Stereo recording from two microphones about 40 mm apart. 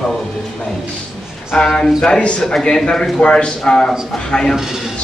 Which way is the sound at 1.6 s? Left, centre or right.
Centre.